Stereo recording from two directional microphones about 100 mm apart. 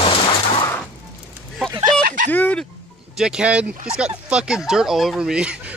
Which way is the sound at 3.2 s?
10° right (ahead or behind).